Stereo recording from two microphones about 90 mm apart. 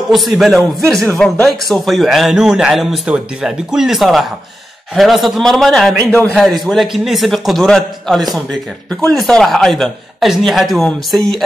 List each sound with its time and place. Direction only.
0.1 s a man's voice: centre (ahead or behind)